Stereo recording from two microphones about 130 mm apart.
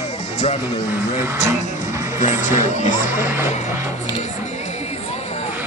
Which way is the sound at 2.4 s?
75° left (ahead or behind).